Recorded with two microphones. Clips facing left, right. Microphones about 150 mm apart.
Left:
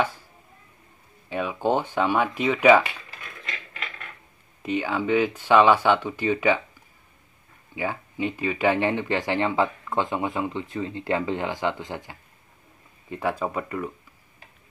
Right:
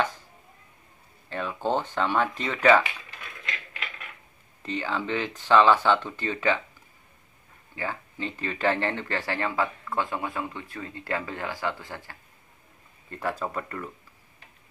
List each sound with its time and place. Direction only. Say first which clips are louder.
1.3 s speech: left 4 dB; 10° left (ahead or behind)
4.6 s speech: left 5 dB; 10° left (ahead or behind)
7.7 s speech: left 4 dB; 15° left (ahead or behind)